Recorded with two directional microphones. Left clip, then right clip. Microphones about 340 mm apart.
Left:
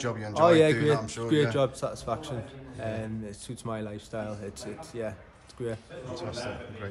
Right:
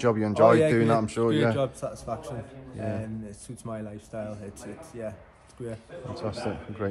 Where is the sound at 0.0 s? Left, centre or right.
Centre.